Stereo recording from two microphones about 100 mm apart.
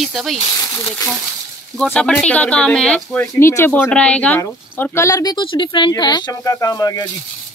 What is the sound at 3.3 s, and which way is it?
Speech, 25° left (ahead or behind).